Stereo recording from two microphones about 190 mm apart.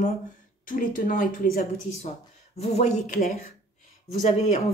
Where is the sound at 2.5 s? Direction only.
35° left (ahead or behind).